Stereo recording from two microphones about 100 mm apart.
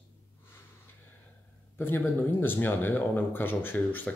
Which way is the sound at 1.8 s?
20° left (ahead or behind).